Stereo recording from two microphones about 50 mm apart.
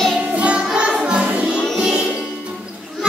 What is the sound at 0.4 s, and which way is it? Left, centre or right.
Music, right.